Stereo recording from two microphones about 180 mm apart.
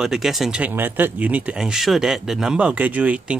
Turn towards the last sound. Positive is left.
turn(degrees=-10)  # may be behind; listen again after turning